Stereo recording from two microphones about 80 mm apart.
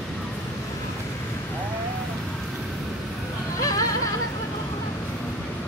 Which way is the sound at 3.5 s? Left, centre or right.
Left.